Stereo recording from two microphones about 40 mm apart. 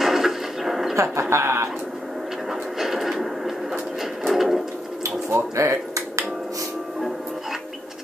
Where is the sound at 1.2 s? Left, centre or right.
Right.